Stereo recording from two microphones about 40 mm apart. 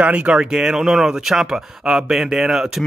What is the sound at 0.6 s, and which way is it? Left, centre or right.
Speech, centre.